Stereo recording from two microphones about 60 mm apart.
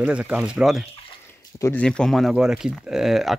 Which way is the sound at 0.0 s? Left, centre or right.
Right.